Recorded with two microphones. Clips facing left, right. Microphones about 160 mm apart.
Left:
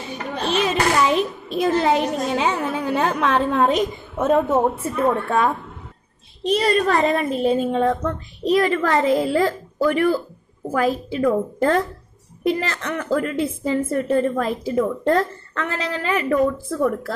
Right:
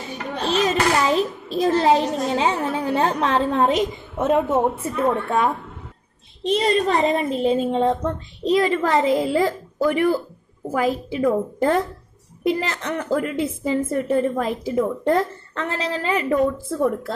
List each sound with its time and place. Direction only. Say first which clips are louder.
0.5 s a child's voice: right 1 dB; 35° right (ahead or behind)